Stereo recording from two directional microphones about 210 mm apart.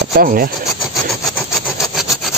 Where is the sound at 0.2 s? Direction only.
40° right (ahead or behind).